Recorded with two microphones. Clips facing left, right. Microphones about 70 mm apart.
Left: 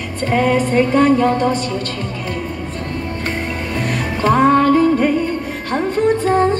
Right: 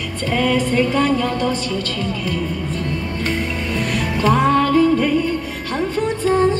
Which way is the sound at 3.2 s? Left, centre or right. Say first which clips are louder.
Right 2 dB; left.